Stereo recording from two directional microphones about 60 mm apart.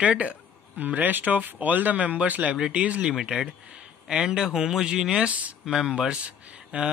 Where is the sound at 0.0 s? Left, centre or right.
Centre.